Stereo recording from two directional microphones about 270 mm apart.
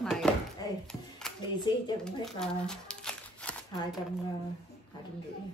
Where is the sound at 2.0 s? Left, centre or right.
Centre.